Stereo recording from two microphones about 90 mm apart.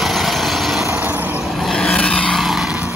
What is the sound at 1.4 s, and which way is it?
Vehicle, centre (ahead or behind).